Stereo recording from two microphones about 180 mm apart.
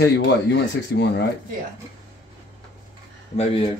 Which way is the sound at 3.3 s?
35° left (ahead or behind).